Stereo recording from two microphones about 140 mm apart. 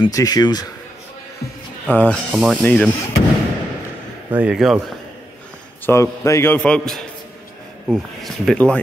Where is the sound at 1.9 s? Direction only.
10° left (ahead or behind).